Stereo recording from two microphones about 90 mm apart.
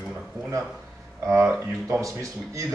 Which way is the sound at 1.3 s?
30° right (ahead or behind).